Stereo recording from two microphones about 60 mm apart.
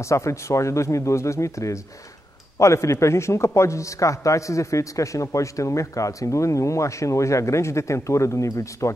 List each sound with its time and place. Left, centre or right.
0.0 s a man's voice: left